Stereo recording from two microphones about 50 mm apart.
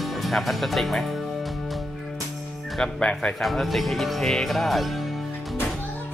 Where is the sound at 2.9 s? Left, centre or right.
Left.